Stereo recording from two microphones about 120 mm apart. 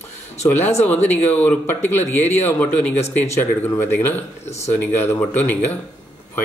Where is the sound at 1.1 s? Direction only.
20° left (ahead or behind).